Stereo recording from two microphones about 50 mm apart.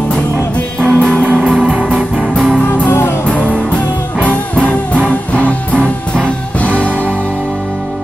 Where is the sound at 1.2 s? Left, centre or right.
Right.